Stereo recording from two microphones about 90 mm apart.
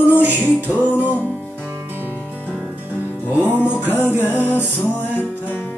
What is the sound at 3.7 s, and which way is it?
Music, 20° right (ahead or behind).